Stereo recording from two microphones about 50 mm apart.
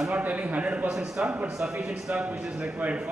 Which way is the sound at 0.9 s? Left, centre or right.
Centre.